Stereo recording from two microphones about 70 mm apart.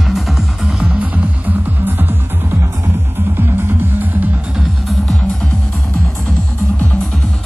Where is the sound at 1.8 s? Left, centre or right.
Right.